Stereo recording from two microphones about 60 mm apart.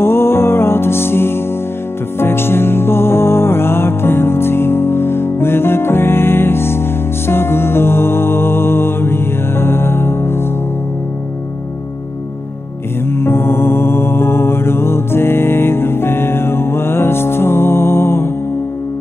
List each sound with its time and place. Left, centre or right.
0.0 s music: left
13.1 s mantra: left